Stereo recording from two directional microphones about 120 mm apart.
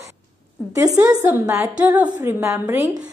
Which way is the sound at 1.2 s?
25° right (ahead or behind).